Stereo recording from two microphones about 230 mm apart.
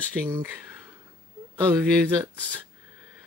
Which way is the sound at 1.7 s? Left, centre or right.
Centre.